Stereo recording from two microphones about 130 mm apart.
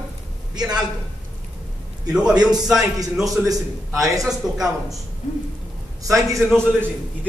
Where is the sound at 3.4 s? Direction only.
25° right (ahead or behind).